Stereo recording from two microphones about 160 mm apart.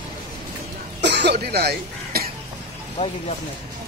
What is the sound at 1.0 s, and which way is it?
Cough, 90° right.